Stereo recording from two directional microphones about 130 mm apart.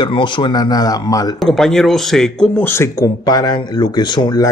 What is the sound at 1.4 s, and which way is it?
Speech, 5° left (ahead or behind).